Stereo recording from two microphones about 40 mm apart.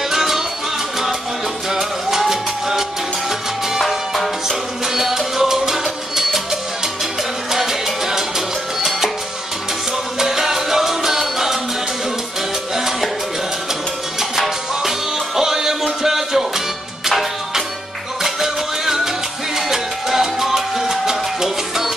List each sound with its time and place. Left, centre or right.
0.1 s music: centre
1.7 s salsa music: centre
3.8 s music: centre
7.5 s salsa music: centre
10.1 s music: centre
12.7 s salsa music: centre
14.3 s music: centre